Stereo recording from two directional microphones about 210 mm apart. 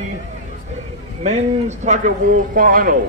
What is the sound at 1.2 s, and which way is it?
Speech, 30° right (ahead or behind).